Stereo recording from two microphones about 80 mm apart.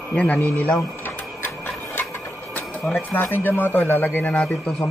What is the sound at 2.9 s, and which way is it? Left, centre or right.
Speech, left.